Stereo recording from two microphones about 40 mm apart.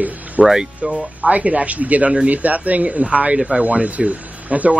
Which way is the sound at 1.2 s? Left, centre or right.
Right.